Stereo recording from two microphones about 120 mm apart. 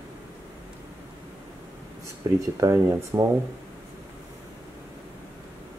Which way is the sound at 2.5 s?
25° right (ahead or behind).